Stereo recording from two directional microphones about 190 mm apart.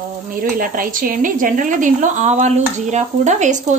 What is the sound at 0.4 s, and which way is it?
A woman's voice, 45° right (ahead or behind).